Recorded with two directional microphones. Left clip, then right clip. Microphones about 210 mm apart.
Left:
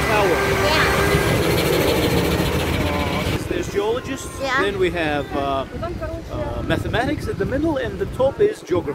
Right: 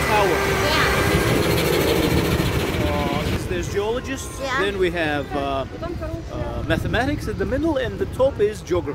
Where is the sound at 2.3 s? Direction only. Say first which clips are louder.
Left 2 dB; 45° left (ahead or behind).